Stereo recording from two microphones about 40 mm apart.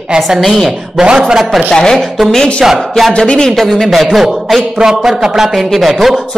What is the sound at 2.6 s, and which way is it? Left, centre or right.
Speech, centre.